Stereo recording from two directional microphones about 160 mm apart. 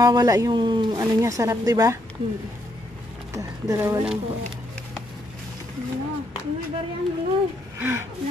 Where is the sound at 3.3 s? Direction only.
20° right (ahead or behind).